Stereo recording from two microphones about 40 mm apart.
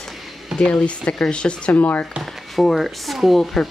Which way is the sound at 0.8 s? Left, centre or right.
Left.